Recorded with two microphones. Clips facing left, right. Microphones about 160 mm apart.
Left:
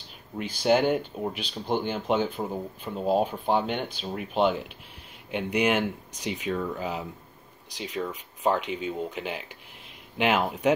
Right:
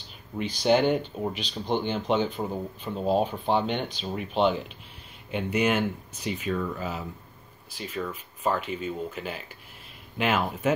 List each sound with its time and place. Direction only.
0.4 s speech: 5° left (ahead or behind)